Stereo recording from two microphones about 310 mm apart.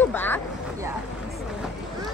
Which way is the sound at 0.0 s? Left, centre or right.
Centre.